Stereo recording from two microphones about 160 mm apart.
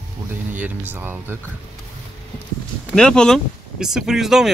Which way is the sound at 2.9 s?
5° left (ahead or behind).